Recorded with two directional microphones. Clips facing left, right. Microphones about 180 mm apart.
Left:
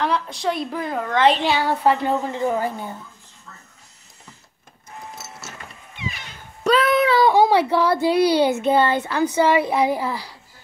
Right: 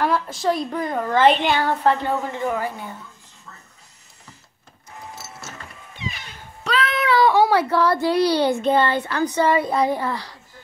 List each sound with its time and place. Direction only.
0.0 s a woman's voice: centre (ahead or behind)
2.3 s speech: 25° left (ahead or behind)
6.6 s child singing: 45° left (ahead or behind)
7.1 s a child's voice: 20° left (ahead or behind)